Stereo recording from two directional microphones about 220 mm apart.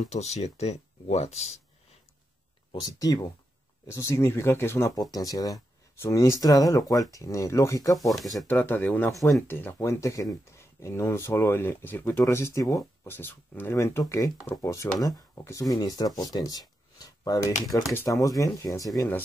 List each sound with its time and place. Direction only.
0.0 s speech: 30° left (ahead or behind)
2.7 s speech: 15° left (ahead or behind)
8.1 s speech: centre (ahead or behind)